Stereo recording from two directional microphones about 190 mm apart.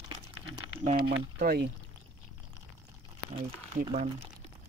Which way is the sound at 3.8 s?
30° right (ahead or behind).